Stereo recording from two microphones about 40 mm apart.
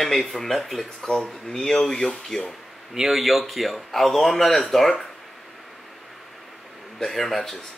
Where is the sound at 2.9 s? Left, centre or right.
Centre.